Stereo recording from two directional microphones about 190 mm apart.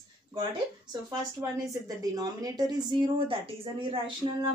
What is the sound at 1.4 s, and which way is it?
A woman's voice, 15° right (ahead or behind).